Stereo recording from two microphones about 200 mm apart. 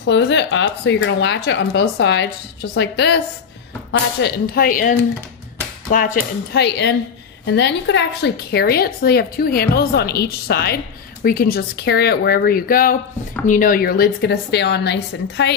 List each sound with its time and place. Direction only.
0.0 s a woman's voice: 65° left (ahead or behind)